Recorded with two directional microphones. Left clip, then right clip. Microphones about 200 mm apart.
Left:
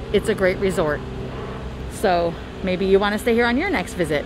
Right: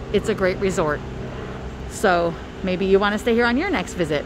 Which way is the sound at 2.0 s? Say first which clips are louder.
Right 1 dB; 20° right (ahead or behind).